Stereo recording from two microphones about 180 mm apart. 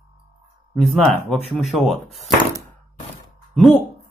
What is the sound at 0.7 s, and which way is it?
Speech, centre (ahead or behind).